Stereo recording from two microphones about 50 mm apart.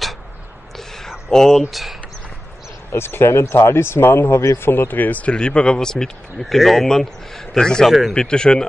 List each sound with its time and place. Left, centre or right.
0.7 s a sound: centre
1.3 s speech: centre
1.6 s speech: centre
2.9 s speech: left
5.3 s speech: centre
6.3 s speech: centre